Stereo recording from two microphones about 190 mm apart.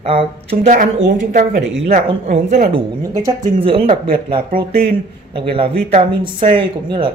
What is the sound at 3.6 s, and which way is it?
Speech, 30° right (ahead or behind).